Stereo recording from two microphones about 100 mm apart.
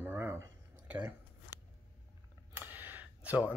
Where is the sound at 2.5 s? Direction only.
20° right (ahead or behind).